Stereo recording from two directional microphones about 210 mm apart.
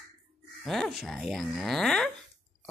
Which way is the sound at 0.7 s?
Centre (ahead or behind).